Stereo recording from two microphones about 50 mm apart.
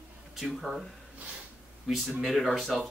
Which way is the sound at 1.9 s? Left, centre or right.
Centre.